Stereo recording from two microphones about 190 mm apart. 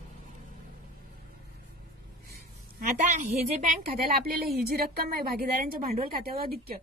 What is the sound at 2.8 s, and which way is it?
A woman's voice, 40° right (ahead or behind).